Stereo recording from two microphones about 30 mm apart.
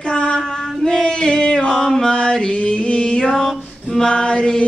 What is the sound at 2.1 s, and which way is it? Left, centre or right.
Mantra, left.